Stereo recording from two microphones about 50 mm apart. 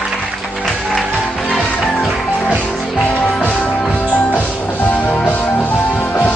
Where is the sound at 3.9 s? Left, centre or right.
Left.